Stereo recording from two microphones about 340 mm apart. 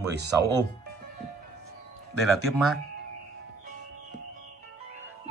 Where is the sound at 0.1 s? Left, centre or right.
Right.